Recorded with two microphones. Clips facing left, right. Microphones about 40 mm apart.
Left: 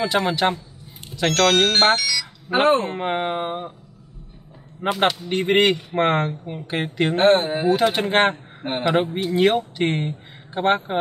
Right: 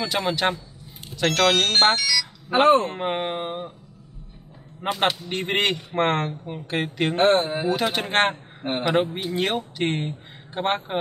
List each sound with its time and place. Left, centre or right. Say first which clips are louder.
0.0 s speech: left 3 dB; centre
5.3 s speech: left 6 dB; centre
7.2 s speech: left 2 dB; left
7.8 s speech: left 2 dB; centre